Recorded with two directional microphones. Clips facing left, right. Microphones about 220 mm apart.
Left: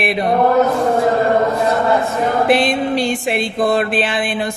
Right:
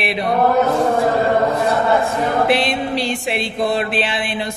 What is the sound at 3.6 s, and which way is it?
Speech, 50° left (ahead or behind).